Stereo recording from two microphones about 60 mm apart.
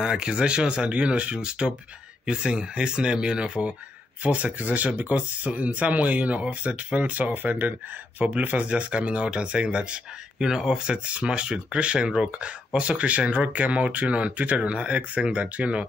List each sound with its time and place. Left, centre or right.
0.0 s speech: centre